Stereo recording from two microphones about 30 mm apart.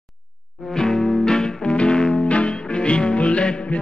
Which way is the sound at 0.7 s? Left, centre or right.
Left.